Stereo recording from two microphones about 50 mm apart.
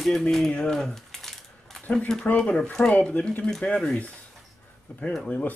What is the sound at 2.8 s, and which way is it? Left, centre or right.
Speech, left.